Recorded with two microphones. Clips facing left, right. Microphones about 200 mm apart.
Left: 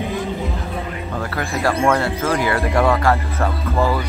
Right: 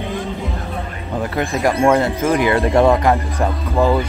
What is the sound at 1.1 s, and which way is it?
Speech, 20° right (ahead or behind).